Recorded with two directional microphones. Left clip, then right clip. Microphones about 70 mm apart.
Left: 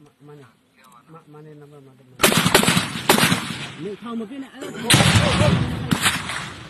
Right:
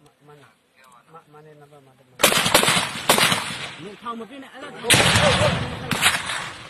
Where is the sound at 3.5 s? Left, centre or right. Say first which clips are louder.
Right 1 dB; right.